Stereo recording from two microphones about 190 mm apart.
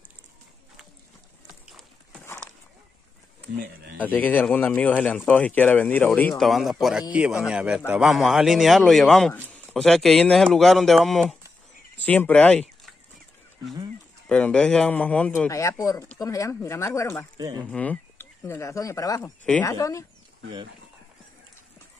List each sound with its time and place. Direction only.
3.5 s speech: 50° right (ahead or behind)
4.0 s a man's voice: 10° left (ahead or behind)
14.3 s speech: 5° left (ahead or behind)
17.4 s speech: 20° right (ahead or behind)
17.6 s speech: 5° left (ahead or behind)